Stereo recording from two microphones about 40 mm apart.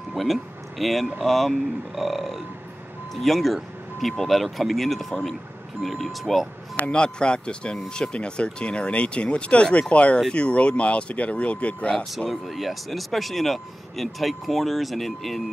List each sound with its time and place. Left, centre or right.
0.1 s speech: centre
6.9 s speech: left
12.3 s speech: centre